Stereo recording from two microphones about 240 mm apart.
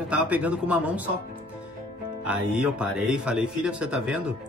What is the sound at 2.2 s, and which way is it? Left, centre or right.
A man's voice, centre.